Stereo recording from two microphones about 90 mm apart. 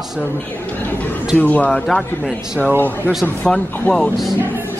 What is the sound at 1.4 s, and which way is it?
Speech, 15° left (ahead or behind).